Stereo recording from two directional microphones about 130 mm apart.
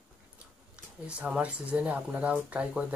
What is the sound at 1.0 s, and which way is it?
Speech, 10° right (ahead or behind).